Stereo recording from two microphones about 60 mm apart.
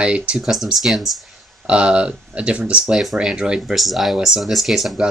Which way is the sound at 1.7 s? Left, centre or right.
Centre.